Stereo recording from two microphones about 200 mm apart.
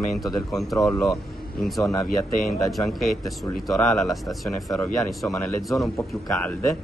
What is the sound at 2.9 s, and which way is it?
Speech, centre (ahead or behind).